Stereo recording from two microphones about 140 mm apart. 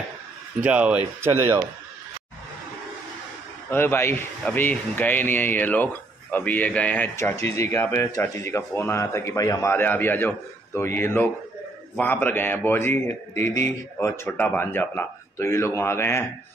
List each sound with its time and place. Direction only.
0.7 s speech: 10° right (ahead or behind)
3.7 s speech: 15° left (ahead or behind)